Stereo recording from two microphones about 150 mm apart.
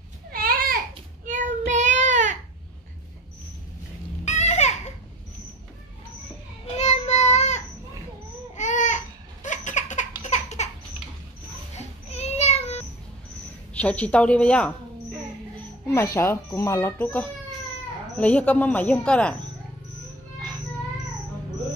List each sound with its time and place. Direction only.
0.3 s a sound: 80° right
1.2 s child singing: 55° right (ahead or behind)
4.2 s children playing: 50° left (ahead or behind)
6.6 s child singing: 50° left (ahead or behind)
8.5 s a sound: 55° left (ahead or behind)
10.2 s baby laughter: 50° left (ahead or behind)
11.7 s a sound: 45° left (ahead or behind)
13.7 s speech: 10° left (ahead or behind)
15.9 s speech: 20° left (ahead or behind)